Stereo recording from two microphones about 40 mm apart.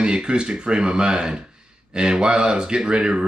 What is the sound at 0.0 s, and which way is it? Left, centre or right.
Speech, right.